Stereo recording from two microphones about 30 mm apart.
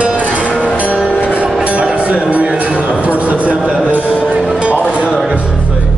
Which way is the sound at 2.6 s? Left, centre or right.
Right.